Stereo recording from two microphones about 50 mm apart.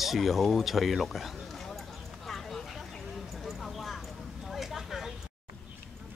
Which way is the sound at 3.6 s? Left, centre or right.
Centre.